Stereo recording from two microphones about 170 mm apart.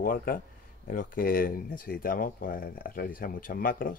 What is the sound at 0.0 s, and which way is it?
Speech, 55° left (ahead or behind).